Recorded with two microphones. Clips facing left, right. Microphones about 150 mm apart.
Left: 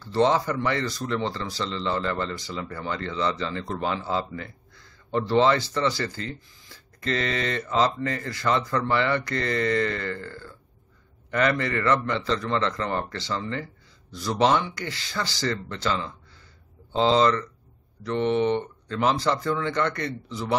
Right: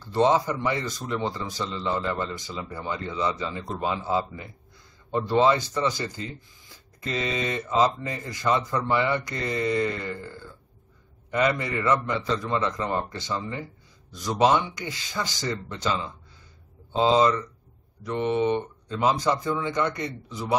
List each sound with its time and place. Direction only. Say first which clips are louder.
0.1 s a man's voice: even; 15° right (ahead or behind)